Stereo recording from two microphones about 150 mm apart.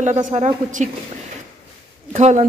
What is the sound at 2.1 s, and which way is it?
Speech, 50° right (ahead or behind).